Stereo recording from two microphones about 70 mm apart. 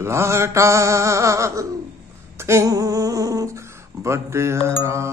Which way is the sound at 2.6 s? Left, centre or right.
Right.